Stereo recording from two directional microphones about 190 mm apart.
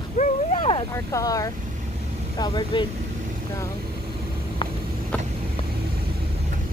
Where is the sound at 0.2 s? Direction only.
35° left (ahead or behind).